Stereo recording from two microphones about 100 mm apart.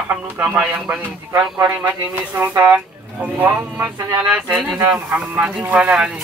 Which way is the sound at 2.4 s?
30° right (ahead or behind).